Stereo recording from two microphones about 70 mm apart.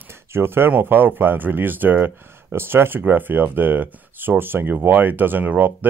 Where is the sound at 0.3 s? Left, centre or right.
Right.